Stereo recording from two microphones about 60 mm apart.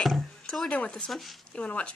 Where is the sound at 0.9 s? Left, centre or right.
Centre.